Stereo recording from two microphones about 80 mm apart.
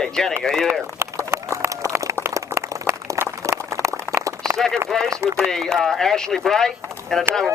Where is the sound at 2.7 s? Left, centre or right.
Right.